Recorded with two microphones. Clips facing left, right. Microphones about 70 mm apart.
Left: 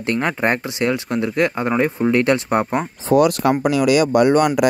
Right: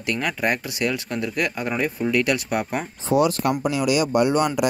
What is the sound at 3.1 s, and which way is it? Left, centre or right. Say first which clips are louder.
Speech: left 5 dB; left.